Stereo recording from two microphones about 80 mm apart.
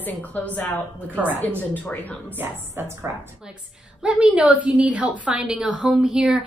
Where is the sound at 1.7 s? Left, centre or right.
Left.